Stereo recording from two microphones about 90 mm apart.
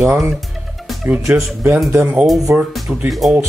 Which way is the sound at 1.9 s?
30° right (ahead or behind).